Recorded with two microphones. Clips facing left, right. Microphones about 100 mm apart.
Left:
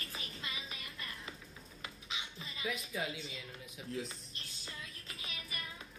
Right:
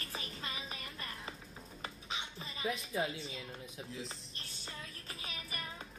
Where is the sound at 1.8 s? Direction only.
35° right (ahead or behind).